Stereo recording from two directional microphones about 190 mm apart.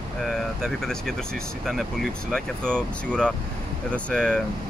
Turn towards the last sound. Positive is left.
turn(degrees=5)  # may be behind; listen again after turning